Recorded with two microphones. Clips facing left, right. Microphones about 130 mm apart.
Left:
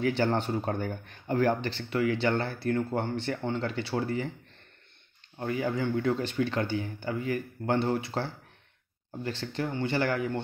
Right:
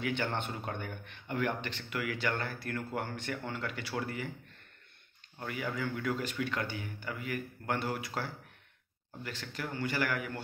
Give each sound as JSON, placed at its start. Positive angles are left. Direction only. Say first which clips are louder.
{"t": 0.0, "sound": "speech", "louder": "left 7 dB", "side_deg": 35}
{"t": 5.4, "sound": "speech", "louder": "left 7 dB", "side_deg": 30}